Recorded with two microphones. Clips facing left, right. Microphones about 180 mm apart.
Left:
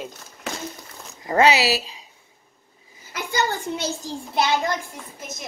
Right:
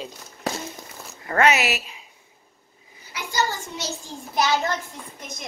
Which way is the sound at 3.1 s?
55° left (ahead or behind).